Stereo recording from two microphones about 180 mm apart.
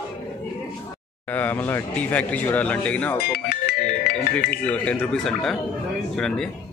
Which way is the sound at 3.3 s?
60° left (ahead or behind).